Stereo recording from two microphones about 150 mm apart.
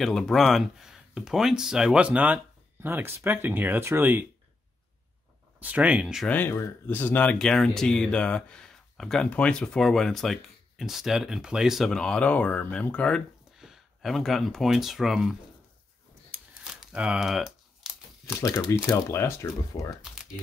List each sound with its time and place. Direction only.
0.0 s speech: centre (ahead or behind); by 4.3 s 15° right (ahead or behind)
5.6 s speech: 10° right (ahead or behind)
6.2 s speech: 15° left (ahead or behind); by 15.3 s centre (ahead or behind)
16.3 s a sound: 10° right (ahead or behind)
16.6 s crumpling: 5° right (ahead or behind)
18.4 s speech: 20° left (ahead or behind)
20.0 s crumpling: 5° right (ahead or behind)